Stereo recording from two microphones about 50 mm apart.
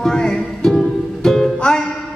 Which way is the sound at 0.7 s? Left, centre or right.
Centre.